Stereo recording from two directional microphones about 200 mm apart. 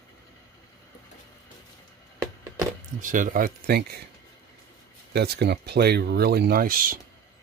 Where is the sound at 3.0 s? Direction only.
40° right (ahead or behind).